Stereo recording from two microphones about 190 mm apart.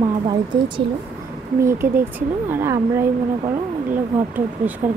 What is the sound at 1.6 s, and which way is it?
Speech, 10° right (ahead or behind).